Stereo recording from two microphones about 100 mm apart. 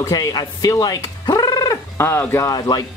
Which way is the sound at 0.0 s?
40° left (ahead or behind).